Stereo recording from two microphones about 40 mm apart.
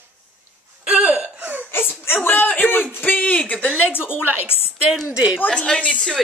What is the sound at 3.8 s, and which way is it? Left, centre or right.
Speech, left.